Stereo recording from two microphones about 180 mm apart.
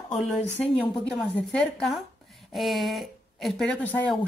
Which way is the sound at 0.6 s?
10° left (ahead or behind).